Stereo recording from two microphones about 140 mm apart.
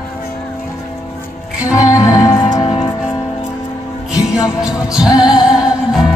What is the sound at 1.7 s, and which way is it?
Music, 25° left (ahead or behind).